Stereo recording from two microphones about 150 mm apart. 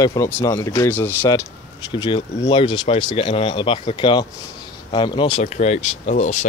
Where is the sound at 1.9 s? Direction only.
30° left (ahead or behind).